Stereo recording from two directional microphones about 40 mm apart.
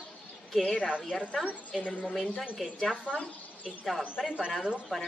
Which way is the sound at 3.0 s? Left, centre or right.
Left.